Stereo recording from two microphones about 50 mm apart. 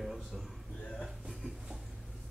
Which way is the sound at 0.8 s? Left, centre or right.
Left.